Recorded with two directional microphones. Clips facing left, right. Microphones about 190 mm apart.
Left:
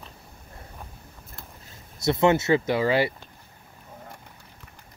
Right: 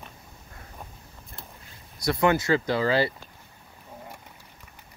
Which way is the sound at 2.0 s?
25° left (ahead or behind).